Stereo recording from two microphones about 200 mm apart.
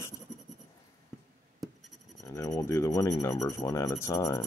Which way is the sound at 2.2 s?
15° left (ahead or behind).